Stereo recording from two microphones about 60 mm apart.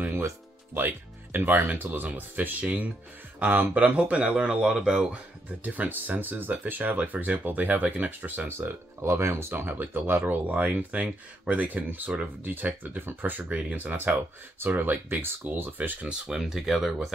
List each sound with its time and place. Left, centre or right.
0.0 s music: right
0.7 s speech: right; by 5.2 s centre
5.6 s speech: right
8.5 s speech: right
9.5 s speech: right
13.7 s speech: right
16.1 s speech: centre